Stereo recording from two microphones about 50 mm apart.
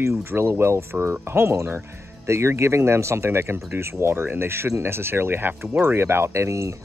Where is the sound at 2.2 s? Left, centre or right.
Right.